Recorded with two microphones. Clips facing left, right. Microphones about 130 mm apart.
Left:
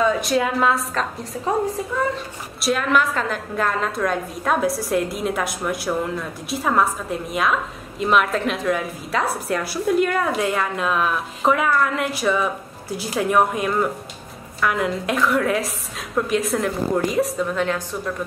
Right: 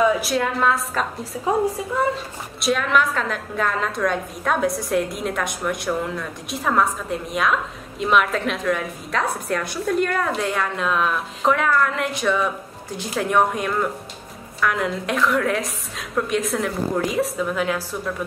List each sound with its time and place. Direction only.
0.0 s a woman's voice: centre (ahead or behind)